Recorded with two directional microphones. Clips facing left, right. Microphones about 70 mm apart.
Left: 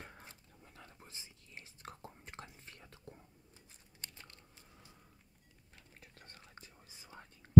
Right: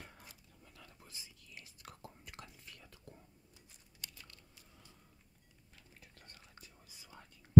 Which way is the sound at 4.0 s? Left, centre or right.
Left.